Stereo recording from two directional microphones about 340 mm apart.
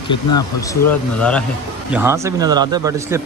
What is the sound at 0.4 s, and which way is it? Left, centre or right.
Speech, centre.